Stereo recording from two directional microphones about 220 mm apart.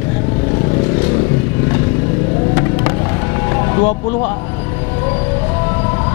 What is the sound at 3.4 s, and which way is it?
Music, 15° left (ahead or behind).